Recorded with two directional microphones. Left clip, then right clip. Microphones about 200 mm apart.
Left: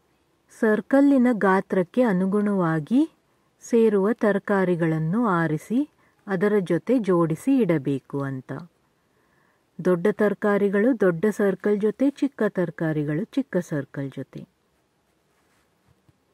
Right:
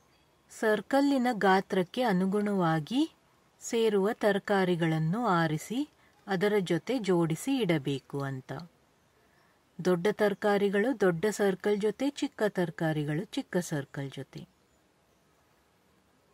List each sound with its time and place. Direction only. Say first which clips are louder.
0.6 s a woman's voice: left 7 dB; 20° left (ahead or behind)
9.8 s speech: left 6 dB; 20° left (ahead or behind)